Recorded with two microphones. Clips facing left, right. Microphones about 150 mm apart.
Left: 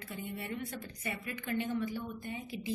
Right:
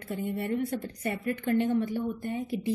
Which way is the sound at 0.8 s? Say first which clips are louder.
Right 10 dB; 45° right (ahead or behind).